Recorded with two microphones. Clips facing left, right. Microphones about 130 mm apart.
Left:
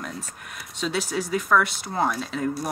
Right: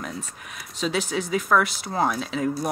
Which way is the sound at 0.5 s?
Centre (ahead or behind).